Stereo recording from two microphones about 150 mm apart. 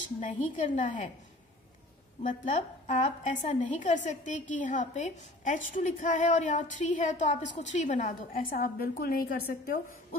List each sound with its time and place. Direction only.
0.2 s a woman's voice: 55° left (ahead or behind)
2.2 s a woman's voice: 55° left (ahead or behind); by 9.8 s 80° left